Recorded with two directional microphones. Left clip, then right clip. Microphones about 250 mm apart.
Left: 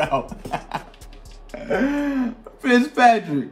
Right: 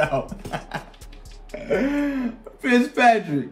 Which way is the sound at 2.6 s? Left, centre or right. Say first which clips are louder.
Left 2 dB; centre.